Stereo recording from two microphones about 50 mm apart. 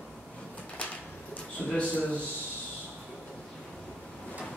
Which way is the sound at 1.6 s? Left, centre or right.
Centre.